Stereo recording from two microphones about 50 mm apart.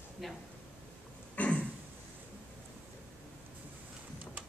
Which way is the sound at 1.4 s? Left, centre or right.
Left.